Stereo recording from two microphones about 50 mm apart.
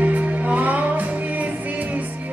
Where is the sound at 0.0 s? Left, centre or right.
Right.